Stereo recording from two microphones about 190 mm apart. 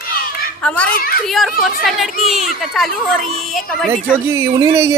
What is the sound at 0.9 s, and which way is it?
Speech, 50° left (ahead or behind).